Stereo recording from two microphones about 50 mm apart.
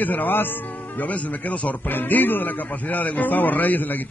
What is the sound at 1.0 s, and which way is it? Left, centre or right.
Speech, left.